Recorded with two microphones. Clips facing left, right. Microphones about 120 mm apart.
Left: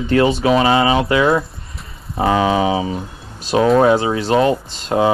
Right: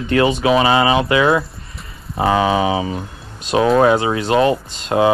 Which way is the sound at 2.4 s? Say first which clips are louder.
Even; 15° right (ahead or behind).